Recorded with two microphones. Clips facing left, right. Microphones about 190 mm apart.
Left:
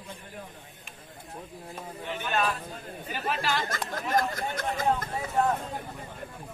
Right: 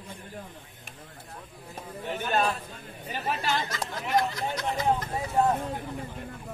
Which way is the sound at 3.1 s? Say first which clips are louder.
Even; 25° right (ahead or behind).